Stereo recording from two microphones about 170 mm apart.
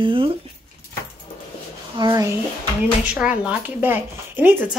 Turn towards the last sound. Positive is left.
turn(degrees=-10)  # may be behind; listen again after turning